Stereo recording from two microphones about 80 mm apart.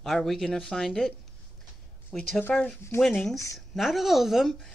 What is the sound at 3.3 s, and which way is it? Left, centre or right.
Speech, left.